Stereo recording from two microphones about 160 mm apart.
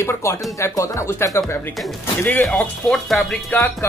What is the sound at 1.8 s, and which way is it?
Speech, 5° left (ahead or behind).